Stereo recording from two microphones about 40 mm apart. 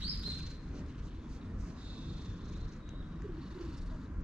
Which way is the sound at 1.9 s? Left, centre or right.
Right.